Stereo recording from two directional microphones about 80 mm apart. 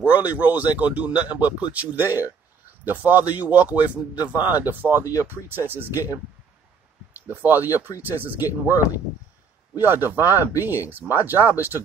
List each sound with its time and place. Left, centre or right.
0.0 s speech: centre
7.2 s speech: right
10.4 s speech: left
10.7 s speech: right